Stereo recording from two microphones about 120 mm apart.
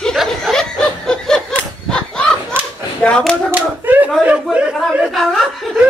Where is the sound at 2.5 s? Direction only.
20° right (ahead or behind).